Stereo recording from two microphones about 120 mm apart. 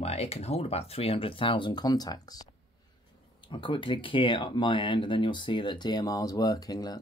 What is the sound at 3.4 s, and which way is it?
Speech, 45° left (ahead or behind).